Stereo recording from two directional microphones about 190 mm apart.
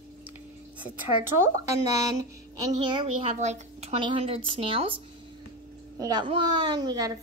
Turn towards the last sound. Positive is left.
turn(degrees=-20)  # may be behind; listen again after turning